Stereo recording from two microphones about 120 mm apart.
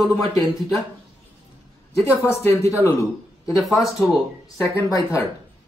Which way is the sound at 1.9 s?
20° left (ahead or behind).